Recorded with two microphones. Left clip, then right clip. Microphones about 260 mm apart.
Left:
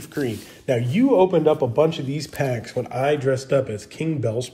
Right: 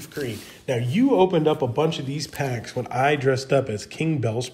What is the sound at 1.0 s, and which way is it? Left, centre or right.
Speech, right.